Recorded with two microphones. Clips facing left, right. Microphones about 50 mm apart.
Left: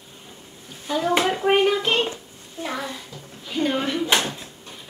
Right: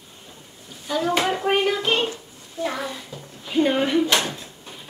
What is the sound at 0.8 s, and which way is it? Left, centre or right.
A child's voice, centre.